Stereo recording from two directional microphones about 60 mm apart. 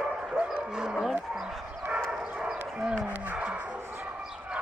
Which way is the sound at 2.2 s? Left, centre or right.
Centre.